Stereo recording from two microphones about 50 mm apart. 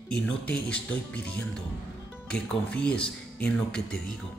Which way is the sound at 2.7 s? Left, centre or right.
Left.